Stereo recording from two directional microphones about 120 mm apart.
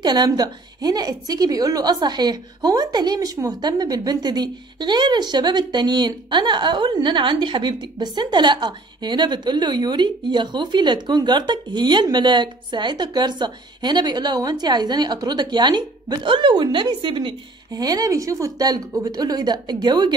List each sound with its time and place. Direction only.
0.0 s a woman's voice: 35° right (ahead or behind)